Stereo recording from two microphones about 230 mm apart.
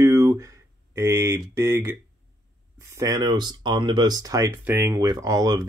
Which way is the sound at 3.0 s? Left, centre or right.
Centre.